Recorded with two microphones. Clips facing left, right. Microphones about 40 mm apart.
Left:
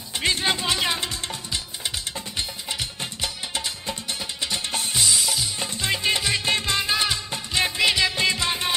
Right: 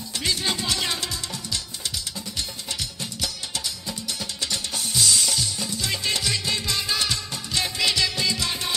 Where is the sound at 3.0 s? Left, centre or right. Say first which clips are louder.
Left 1 dB; left.